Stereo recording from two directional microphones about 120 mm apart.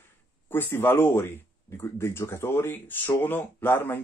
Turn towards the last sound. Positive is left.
turn(degrees=15)  # may be behind; listen again after turning